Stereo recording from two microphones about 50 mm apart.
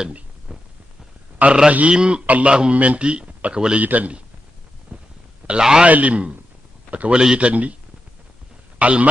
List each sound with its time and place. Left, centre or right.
0.5 s a sound: centre
1.7 s a man's voice: right
3.8 s a man's voice: right
4.9 s a sound: right
5.6 s speech: centre
5.9 s a man's voice: right
8.7 s speech: right